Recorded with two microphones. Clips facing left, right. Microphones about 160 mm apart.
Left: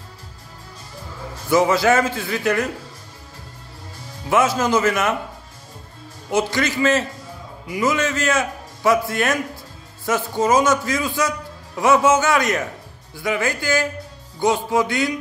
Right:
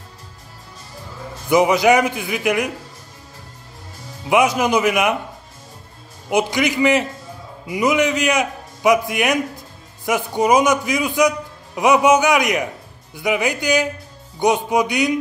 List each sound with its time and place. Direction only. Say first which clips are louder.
1.5 s a man's voice: right 2 dB; 15° right (ahead or behind)
4.3 s a man's voice: right 2 dB; 15° right (ahead or behind)
6.3 s a man's voice: right 2 dB; 15° right (ahead or behind)